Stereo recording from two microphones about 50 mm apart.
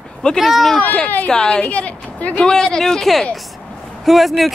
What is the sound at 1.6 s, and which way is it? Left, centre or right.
Speech, left.